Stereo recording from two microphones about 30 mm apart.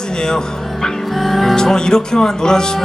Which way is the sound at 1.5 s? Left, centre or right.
Left.